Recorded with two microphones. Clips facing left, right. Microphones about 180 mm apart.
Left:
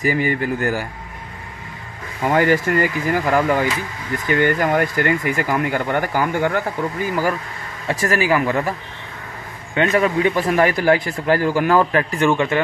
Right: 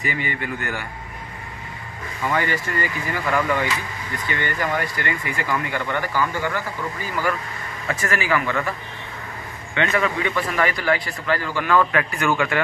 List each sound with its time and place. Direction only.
0.0 s speech: 45° left (ahead or behind)
2.2 s speech: 50° left (ahead or behind)
7.9 s speech: 35° left (ahead or behind)
9.8 s speech: 40° left (ahead or behind); by 12.6 s 25° left (ahead or behind)